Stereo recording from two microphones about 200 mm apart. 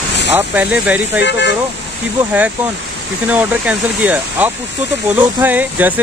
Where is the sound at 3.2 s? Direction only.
5° right (ahead or behind).